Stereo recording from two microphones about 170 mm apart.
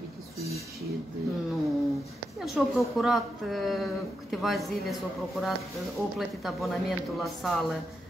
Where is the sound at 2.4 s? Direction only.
Centre (ahead or behind).